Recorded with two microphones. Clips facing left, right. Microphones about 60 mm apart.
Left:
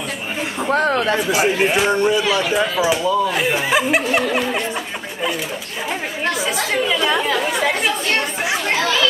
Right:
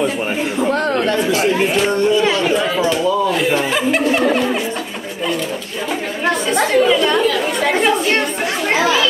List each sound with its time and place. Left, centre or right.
0.6 s speech: centre
1.3 s speech: centre
6.5 s speech: centre
8.7 s children playing: centre